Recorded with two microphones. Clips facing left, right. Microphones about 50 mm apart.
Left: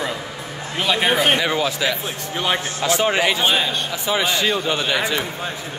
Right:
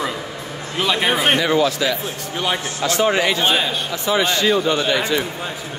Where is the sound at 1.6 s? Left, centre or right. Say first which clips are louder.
Right 2 dB; centre.